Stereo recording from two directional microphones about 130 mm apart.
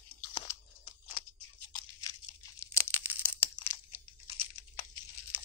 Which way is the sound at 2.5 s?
20° left (ahead or behind).